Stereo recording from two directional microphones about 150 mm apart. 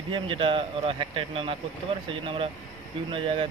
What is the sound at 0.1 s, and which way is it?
Speech, 35° right (ahead or behind).